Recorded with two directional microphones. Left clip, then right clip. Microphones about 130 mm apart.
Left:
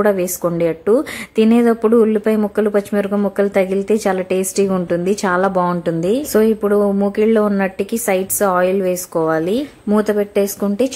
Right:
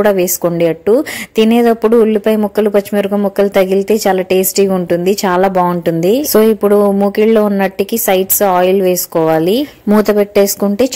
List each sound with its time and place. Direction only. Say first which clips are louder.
0.0 s a woman's voice: right 5 dB; 20° right (ahead or behind)